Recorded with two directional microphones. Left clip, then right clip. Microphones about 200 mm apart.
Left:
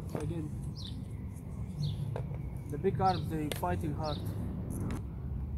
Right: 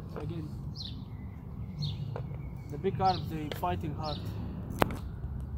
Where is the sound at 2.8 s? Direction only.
20° right (ahead or behind).